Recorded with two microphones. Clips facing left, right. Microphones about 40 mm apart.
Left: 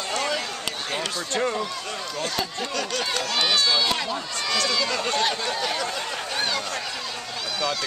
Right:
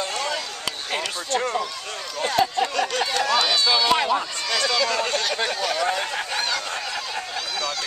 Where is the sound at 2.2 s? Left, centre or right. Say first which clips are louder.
Right 10 dB; right.